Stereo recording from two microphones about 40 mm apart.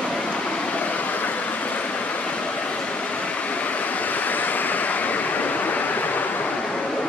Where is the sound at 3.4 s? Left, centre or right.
Left.